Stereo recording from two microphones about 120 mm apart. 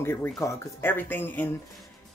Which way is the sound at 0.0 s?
20° left (ahead or behind).